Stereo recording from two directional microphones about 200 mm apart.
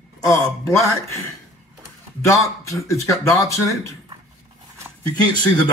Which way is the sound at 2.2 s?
15° left (ahead or behind).